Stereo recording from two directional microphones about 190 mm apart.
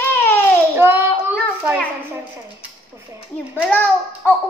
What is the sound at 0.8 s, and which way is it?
Speech, 10° right (ahead or behind).